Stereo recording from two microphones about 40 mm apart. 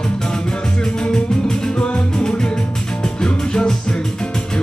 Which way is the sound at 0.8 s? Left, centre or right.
Centre.